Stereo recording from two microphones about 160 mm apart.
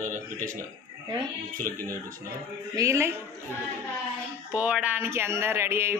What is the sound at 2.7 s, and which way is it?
Speech, 20° right (ahead or behind).